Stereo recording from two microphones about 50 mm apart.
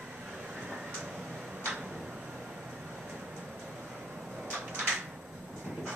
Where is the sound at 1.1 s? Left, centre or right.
Centre.